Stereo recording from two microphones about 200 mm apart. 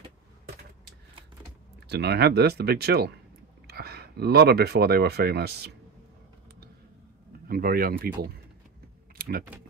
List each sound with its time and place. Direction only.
1.9 s speech: 55° right (ahead or behind)
7.4 s speech: 50° right (ahead or behind)